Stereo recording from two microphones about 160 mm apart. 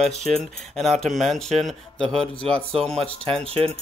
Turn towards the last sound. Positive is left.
turn(degrees=-40)  # may be behind; listen again after turning